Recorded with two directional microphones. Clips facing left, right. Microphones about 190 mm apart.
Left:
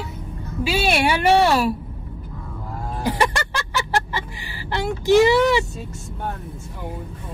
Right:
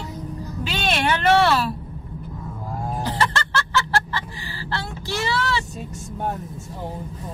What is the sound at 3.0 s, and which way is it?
Music, 15° left (ahead or behind).